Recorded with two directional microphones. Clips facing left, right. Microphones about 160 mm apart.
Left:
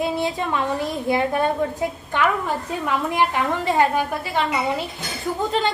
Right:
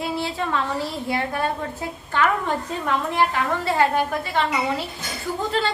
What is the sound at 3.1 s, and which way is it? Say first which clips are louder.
Speech: left 1 dB; 15° left (ahead or behind).